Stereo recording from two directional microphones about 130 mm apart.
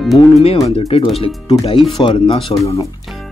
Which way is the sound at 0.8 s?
45° left (ahead or behind).